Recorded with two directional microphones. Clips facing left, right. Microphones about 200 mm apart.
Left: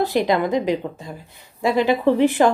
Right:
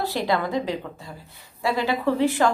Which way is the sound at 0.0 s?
20° left (ahead or behind).